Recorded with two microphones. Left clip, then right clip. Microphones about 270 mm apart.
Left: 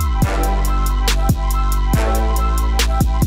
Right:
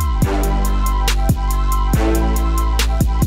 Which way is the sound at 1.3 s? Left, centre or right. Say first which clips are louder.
Right 1 dB; centre.